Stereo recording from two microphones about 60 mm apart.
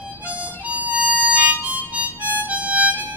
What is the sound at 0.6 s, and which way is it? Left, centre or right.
Harmonica, right.